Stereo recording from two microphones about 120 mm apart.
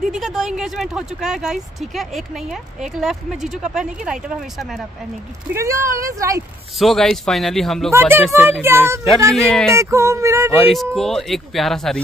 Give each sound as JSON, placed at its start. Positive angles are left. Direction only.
{"t": 0.2, "sound": "speech", "side_deg": 0}
{"t": 5.5, "sound": "speech", "side_deg": -25}
{"t": 6.8, "sound": "speech", "side_deg": 0}
{"t": 7.9, "sound": "speech", "side_deg": -20}
{"t": 9.0, "sound": "speech", "side_deg": 0}
{"t": 9.8, "sound": "speech", "side_deg": -25}
{"t": 10.6, "sound": "speech", "side_deg": 0}